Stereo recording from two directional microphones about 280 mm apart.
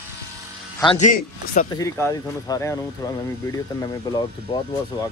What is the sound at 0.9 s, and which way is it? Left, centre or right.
Speech, left.